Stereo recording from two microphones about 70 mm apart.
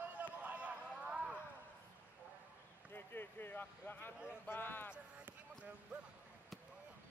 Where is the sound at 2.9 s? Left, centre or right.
Left.